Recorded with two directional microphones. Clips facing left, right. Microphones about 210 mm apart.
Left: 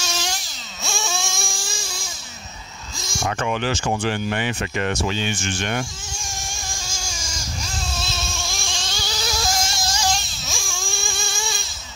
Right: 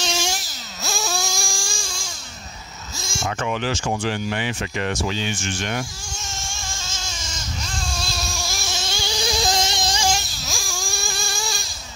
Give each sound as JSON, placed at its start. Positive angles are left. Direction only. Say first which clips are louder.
{"t": 0.1, "sound": "a sound", "louder": "right 3 dB", "side_deg": -5}
{"t": 3.3, "sound": "speech", "louder": "left 1 dB", "side_deg": 60}
{"t": 6.1, "sound": "vehicle", "louder": "even", "side_deg": 15}
{"t": 10.4, "sound": "baby cry", "louder": "right 1 dB", "side_deg": 0}